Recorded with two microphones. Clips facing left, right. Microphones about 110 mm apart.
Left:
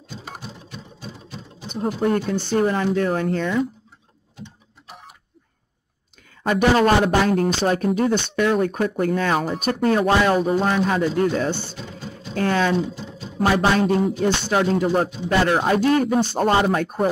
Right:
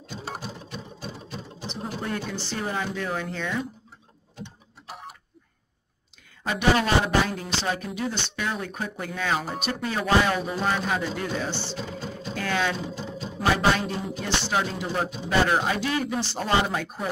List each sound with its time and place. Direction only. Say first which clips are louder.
1.7 s speech: left 10 dB; 45° left (ahead or behind)
6.4 s speech: left 6 dB; 50° left (ahead or behind)